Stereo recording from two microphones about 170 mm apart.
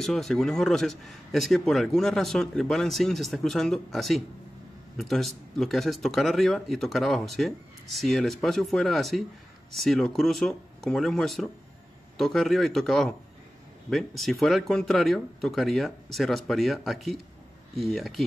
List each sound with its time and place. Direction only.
0.0 s speech: centre (ahead or behind)